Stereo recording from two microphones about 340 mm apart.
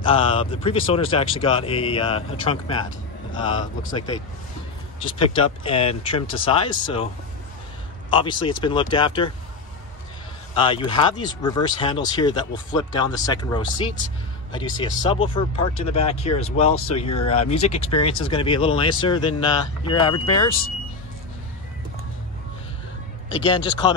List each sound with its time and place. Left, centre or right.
0.0 s speech: centre
5.0 s speech: centre
8.1 s speech: centre
10.5 s speech: centre
16.7 s speech: left
17.3 s speech: centre
23.3 s speech: centre